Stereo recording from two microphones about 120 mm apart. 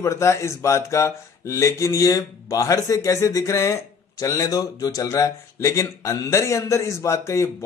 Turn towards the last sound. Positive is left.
turn(degrees=25)  # may be behind; listen again after turning